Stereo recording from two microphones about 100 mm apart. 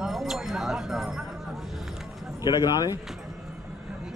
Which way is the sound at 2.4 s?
40° left (ahead or behind).